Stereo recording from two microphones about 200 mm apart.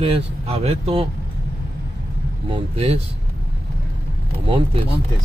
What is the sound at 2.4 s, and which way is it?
Speech, 30° right (ahead or behind).